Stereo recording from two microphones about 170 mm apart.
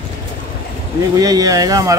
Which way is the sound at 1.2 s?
20° right (ahead or behind).